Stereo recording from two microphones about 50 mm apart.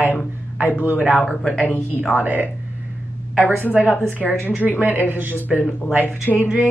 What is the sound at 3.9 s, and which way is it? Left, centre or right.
Speech, right.